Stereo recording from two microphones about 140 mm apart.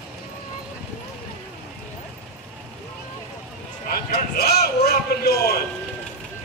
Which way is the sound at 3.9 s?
90° left.